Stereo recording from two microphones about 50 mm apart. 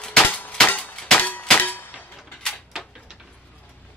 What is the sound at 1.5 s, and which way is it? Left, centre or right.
Clang, left.